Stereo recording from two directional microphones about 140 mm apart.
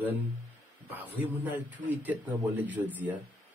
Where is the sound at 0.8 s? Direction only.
15° right (ahead or behind).